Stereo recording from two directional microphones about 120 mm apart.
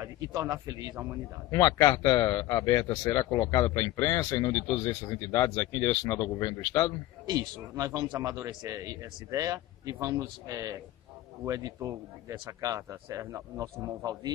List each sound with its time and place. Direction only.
0.0 s a man's voice: 25° right (ahead or behind)
1.5 s a man's voice: 30° left (ahead or behind)
4.5 s a man's voice: 15° left (ahead or behind)
7.2 s speech: 30° right (ahead or behind)